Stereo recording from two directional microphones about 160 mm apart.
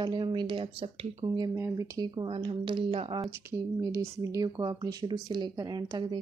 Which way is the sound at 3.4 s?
15° right (ahead or behind).